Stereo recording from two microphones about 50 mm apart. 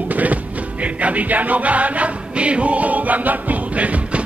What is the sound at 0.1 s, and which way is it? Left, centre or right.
Music, right.